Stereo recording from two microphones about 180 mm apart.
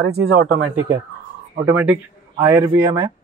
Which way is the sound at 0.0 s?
65° right (ahead or behind).